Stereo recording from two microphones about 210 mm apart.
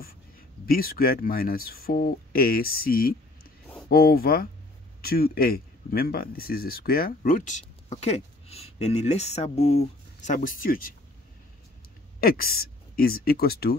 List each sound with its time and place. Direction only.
0.7 s speech: 45° left (ahead or behind)
12.2 s speech: 45° left (ahead or behind)